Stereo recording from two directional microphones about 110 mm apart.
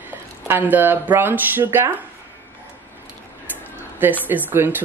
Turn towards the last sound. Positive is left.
turn(degrees=-20)  # may be behind; listen again after turning